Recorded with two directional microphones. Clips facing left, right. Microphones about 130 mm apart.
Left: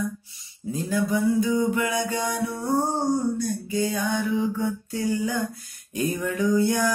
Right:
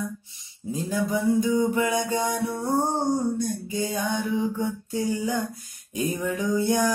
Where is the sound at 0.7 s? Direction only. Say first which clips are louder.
Left 2 dB; 15° right (ahead or behind).